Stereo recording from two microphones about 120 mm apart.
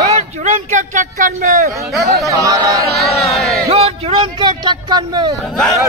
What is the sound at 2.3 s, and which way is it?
Speech, 30° right (ahead or behind).